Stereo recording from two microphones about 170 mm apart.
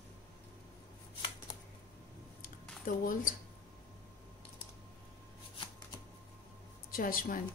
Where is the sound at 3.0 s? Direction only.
50° left (ahead or behind).